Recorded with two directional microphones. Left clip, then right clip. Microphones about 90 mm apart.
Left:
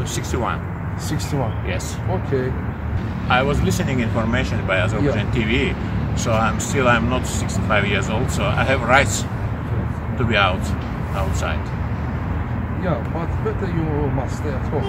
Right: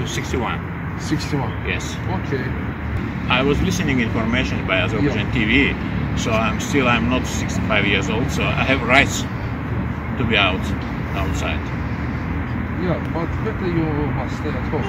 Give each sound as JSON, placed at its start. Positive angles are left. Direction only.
{"t": 3.3, "sound": "speech", "side_deg": 50}
{"t": 10.3, "sound": "speech", "side_deg": 45}